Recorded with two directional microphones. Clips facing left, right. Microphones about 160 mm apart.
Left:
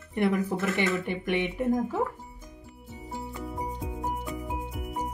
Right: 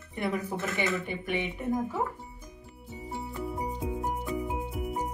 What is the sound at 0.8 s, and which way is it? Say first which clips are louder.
Speech: left 3 dB; 70° left (ahead or behind).